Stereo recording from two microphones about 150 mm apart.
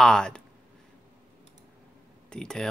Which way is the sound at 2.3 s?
5° left (ahead or behind).